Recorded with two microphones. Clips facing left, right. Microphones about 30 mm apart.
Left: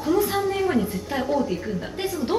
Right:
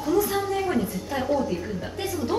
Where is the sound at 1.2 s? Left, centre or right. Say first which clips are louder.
Left 1 dB; centre.